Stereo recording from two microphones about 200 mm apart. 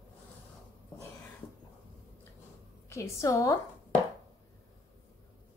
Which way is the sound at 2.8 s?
15° left (ahead or behind).